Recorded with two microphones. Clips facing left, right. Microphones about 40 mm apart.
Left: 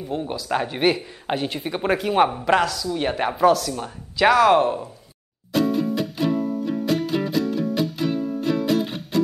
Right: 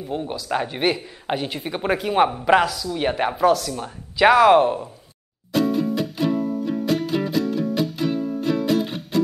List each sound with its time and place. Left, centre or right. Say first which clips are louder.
0.1 s speech: even; centre
5.5 s music: even; centre